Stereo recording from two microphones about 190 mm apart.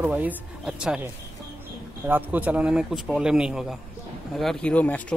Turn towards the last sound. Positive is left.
turn(degrees=5)  # may be behind; listen again after turning